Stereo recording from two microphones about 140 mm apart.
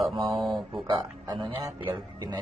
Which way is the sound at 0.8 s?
35° right (ahead or behind).